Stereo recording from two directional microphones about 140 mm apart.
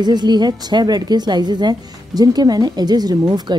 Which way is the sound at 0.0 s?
30° right (ahead or behind).